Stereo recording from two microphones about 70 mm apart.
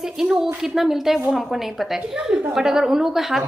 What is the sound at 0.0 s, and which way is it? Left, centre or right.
A woman's voice, centre.